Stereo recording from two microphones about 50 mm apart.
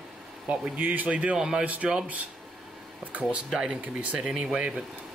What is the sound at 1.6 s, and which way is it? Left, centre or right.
Speech, right.